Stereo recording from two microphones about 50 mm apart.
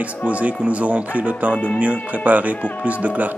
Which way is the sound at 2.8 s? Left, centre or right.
Right.